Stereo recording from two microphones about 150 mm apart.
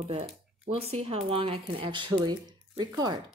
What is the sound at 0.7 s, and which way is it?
Speech, 40° right (ahead or behind).